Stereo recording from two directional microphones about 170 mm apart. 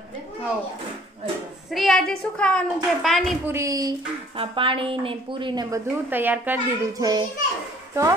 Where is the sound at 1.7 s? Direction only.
Centre (ahead or behind).